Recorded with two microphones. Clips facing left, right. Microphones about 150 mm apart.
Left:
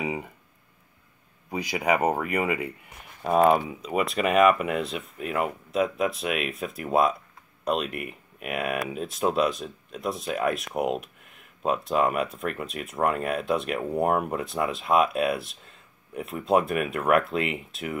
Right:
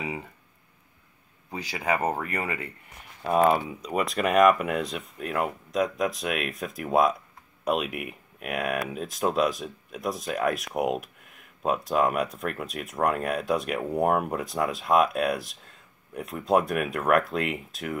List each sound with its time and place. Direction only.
0.0 s a sound: 15° left (ahead or behind)
1.5 s speech: 15° left (ahead or behind)
3.2 s speech: 5° left (ahead or behind)